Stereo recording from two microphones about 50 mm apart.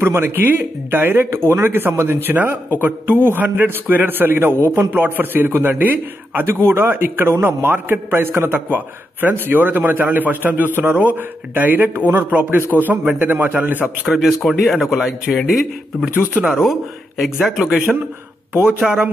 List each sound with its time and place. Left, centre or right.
0.0 s a man's voice: right
1.3 s a man's voice: right
1.7 s a man's voice: right
2.3 s a man's voice: right
4.9 s a man's voice: right
6.9 s a man's voice: right
14.1 s a man's voice: centre
17.2 s a man's voice: centre